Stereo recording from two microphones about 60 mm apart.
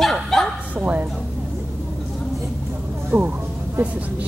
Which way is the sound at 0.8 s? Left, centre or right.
Right.